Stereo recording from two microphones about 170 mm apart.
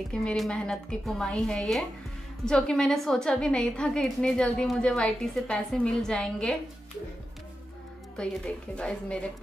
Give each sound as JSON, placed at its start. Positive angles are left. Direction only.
{"t": 0.1, "sound": "a woman's voice", "side_deg": 5}
{"t": 8.7, "sound": "a woman's voice", "side_deg": 5}